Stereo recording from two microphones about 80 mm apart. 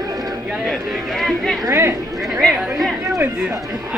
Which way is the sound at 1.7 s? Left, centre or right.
Right.